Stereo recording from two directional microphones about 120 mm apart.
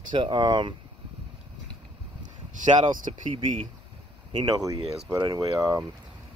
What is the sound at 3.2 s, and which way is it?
Speech, 45° right (ahead or behind).